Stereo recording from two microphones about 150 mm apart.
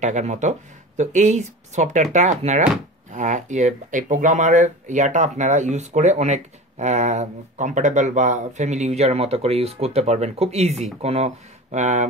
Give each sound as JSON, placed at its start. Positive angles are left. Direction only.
{"t": 0.0, "sound": "speech", "side_deg": -50}